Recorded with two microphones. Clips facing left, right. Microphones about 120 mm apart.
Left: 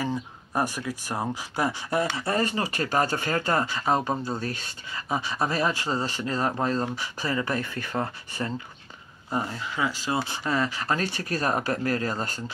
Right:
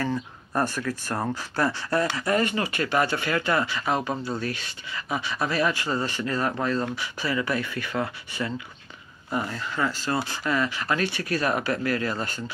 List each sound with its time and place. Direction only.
0.0 s speech: 10° left (ahead or behind)
2.1 s speech: 30° left (ahead or behind)
9.5 s speech: 10° left (ahead or behind)
10.1 s speech: 25° left (ahead or behind)